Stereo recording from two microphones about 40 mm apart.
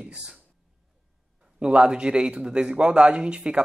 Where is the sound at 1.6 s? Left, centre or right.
Right.